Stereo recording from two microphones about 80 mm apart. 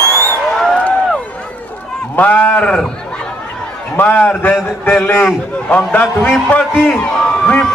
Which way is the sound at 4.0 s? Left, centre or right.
Centre.